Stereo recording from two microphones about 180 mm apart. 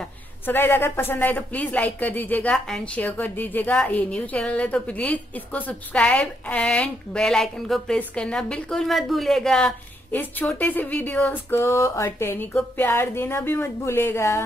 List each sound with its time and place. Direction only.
0.5 s speech: 10° left (ahead or behind)